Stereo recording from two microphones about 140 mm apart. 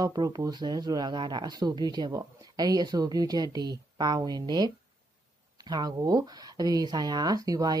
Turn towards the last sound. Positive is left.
turn(degrees=-25)  # may be behind; listen again after turning